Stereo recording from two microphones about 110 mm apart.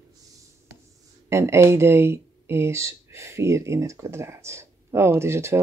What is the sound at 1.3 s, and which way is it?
A woman's voice, 25° right (ahead or behind).